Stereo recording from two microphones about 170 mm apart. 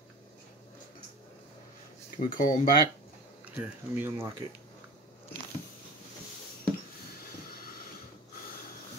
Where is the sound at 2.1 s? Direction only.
50° left (ahead or behind).